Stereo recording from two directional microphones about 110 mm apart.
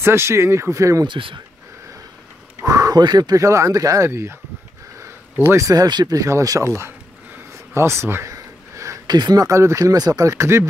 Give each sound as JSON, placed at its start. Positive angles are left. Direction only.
{"t": 0.0, "sound": "speech", "side_deg": -25}
{"t": 1.0, "sound": "speech", "side_deg": -50}
{"t": 2.6, "sound": "speech", "side_deg": -35}